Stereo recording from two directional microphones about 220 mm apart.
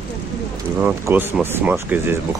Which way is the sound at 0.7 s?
5° right (ahead or behind).